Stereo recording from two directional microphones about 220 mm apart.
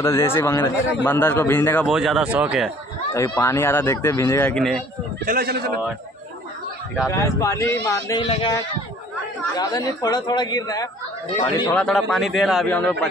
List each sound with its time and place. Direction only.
0.0 s speech: 10° left (ahead or behind)
1.9 s a man's voice: centre (ahead or behind)
3.1 s speech: 15° left (ahead or behind)
5.2 s a man's voice: 45° right (ahead or behind)
7.1 s a man's voice: 15° left (ahead or behind)
9.6 s speech: 15° left (ahead or behind)
11.6 s a man's voice: 5° left (ahead or behind)